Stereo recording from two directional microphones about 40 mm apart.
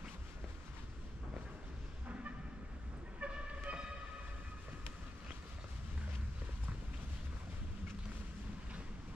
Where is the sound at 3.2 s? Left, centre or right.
Right.